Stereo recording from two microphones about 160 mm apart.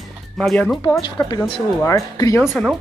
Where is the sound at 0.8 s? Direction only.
25° left (ahead or behind).